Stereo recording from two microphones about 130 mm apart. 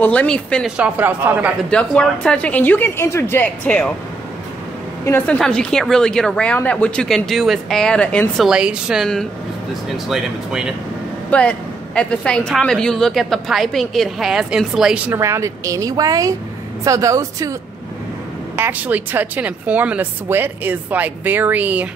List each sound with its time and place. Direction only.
0.0 s a woman's voice: 10° left (ahead or behind)
0.7 s a woman's voice: 10° right (ahead or behind)
1.7 s a woman's voice: 10° left (ahead or behind)
5.2 s a woman's voice: 10° left (ahead or behind)
8.5 s a woman's voice: 5° right (ahead or behind)
11.2 s a woman's voice: 10° left (ahead or behind)
15.1 s speech: 20° right (ahead or behind)
18.6 s a woman's voice: 15° right (ahead or behind)